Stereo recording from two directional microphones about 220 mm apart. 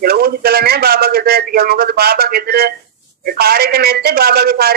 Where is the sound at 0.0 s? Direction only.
45° right (ahead or behind).